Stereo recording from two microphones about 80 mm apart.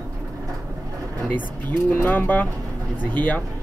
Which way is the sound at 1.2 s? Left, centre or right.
Left.